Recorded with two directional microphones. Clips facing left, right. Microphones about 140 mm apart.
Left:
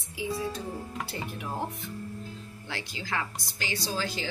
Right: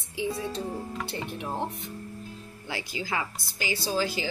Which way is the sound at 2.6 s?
10° right (ahead or behind).